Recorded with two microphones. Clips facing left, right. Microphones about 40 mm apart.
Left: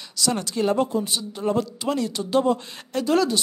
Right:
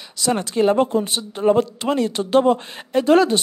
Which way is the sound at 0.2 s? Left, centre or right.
Right.